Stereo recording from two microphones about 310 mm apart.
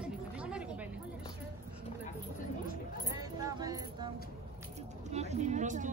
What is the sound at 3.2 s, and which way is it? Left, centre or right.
Music, centre.